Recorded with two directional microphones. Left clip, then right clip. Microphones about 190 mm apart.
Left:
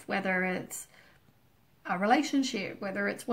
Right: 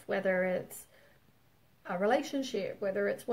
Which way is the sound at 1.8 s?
20° right (ahead or behind).